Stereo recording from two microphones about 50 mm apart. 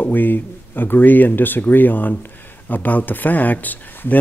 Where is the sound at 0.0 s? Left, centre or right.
Left.